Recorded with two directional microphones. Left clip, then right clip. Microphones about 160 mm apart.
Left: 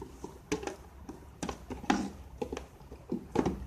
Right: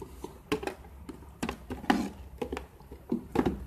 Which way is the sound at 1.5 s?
25° right (ahead or behind).